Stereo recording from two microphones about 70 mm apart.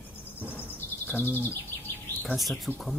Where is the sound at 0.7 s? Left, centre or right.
Left.